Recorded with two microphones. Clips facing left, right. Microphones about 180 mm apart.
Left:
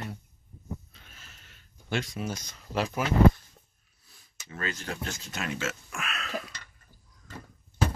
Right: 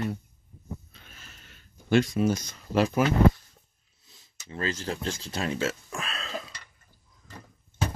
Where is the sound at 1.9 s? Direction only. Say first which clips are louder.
Right 10 dB; 45° right (ahead or behind).